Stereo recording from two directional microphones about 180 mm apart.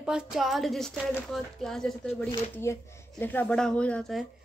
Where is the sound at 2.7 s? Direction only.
15° left (ahead or behind).